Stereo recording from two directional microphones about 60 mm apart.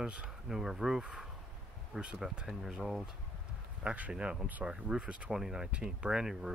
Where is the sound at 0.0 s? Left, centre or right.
Right.